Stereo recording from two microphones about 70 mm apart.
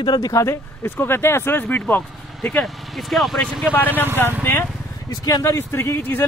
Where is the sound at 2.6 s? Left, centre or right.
Centre.